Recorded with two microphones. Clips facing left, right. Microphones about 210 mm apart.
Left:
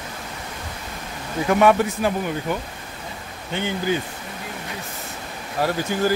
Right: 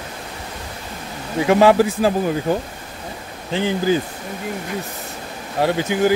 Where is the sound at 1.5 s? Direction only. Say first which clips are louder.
Right 4 dB; 30° right (ahead or behind).